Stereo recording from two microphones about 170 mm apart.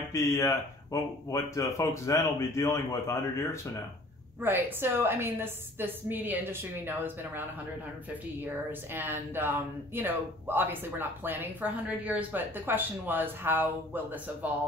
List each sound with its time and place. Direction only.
0.1 s speech: 15° left (ahead or behind)
4.4 s speech: 10° right (ahead or behind)
8.9 s speech: 10° right (ahead or behind)